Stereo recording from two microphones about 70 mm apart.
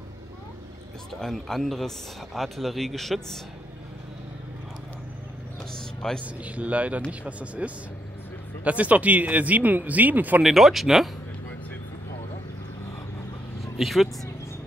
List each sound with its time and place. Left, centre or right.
1.2 s a man's voice: centre
6.2 s speech: centre
10.4 s a man's voice: centre
13.7 s speech: centre